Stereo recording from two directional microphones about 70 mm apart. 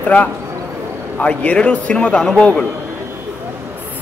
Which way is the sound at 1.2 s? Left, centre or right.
Centre.